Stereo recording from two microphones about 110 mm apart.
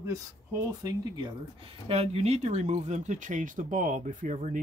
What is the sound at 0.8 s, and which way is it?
Speech, 35° right (ahead or behind).